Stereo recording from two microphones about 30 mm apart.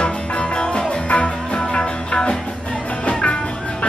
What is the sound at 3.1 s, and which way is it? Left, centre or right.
Music, left.